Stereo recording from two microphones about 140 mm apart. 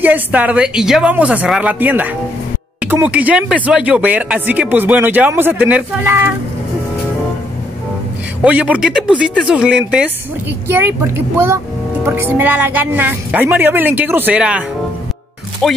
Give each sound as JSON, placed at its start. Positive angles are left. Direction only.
{"t": 0.0, "sound": "speech", "side_deg": -10}
{"t": 8.5, "sound": "speech", "side_deg": -10}
{"t": 15.6, "sound": "speech", "side_deg": 5}